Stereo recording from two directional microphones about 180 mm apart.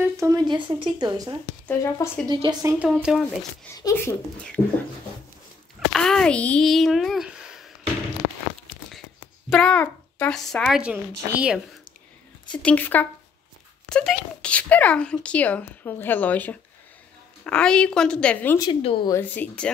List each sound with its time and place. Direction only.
0.0 s speech: 15° right (ahead or behind)
1.7 s speech: 15° left (ahead or behind)
2.2 s speech: 25° right (ahead or behind)
2.6 s speech: 15° right (ahead or behind)
2.9 s speech: centre (ahead or behind)
3.8 s speech: 10° left (ahead or behind)
5.9 s a child's voice: 5° left (ahead or behind)
9.5 s speech: 5° left (ahead or behind)
12.6 s speech: 10° left (ahead or behind)
18.6 s speech: 30° left (ahead or behind)
19.1 s speech: 10° left (ahead or behind)